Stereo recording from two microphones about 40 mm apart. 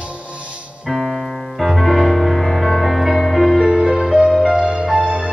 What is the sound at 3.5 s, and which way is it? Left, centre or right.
Music, centre.